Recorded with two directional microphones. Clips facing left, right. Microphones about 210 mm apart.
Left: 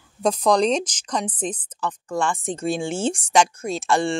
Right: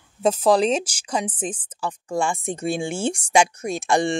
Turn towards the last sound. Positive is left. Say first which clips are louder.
# right 1 dB
turn(degrees=-15)  # may be behind; listen again after turning